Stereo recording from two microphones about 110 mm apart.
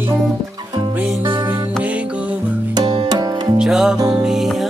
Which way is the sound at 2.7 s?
40° right (ahead or behind).